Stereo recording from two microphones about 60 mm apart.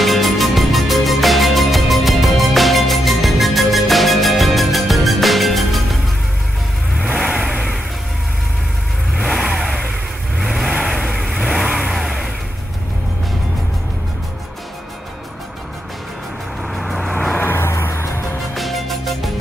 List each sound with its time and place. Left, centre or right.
0.0 s music: centre
7.2 s vehicle: centre
9.2 s vehicle: centre
11.9 s vehicle: centre
16.6 s vehicle: centre
17.4 s music: left
18.5 s music: centre